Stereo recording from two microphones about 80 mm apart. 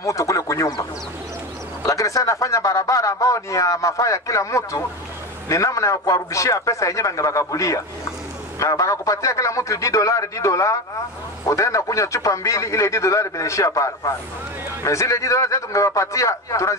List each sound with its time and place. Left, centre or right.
0.0 s quack: left
1.8 s a man's voice: left